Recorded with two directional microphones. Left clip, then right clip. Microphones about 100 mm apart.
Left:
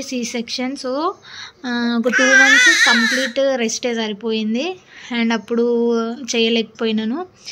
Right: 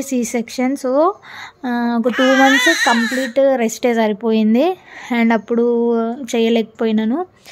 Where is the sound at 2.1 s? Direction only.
15° right (ahead or behind).